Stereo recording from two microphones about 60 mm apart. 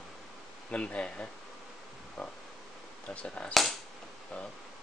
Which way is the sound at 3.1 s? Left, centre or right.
Centre.